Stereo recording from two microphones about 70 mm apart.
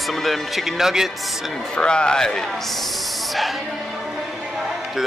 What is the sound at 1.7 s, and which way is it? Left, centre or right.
Speech, centre.